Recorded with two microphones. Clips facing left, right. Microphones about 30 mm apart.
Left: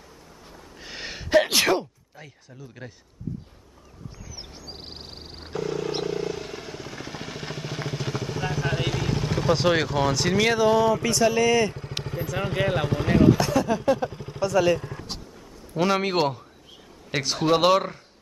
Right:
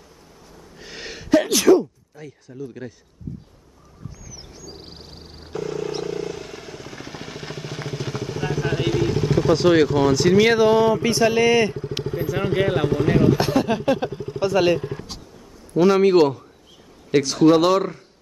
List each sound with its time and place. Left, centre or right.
0.7 s gasp: centre
1.3 s a sound: left
2.1 s speech: centre
2.5 s speech: centre
4.3 s a sound: left
5.5 s wild animals: centre
6.0 s vehicle: centre
10.4 s speech: centre
12.1 s speech: centre
13.4 s a sound: right
13.8 s speech: right
14.1 s vehicle: centre
14.4 s speech: right
15.7 s a man's voice: centre